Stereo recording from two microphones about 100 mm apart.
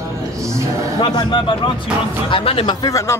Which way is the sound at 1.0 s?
50° left (ahead or behind).